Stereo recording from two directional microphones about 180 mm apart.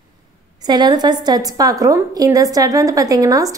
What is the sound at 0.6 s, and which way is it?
A woman's voice, 25° right (ahead or behind).